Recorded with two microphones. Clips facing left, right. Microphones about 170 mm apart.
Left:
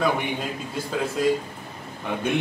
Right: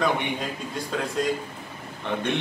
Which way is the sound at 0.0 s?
5° left (ahead or behind).